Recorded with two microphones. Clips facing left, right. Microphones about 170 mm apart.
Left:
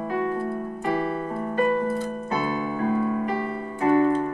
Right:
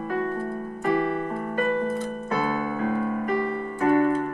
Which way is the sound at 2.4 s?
55° right (ahead or behind).